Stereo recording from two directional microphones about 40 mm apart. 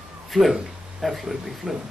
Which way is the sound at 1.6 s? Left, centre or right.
Right.